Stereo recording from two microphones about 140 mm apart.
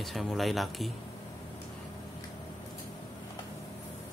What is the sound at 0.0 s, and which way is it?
Speech, centre (ahead or behind).